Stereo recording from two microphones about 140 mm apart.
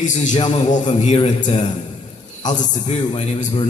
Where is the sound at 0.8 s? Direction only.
40° left (ahead or behind).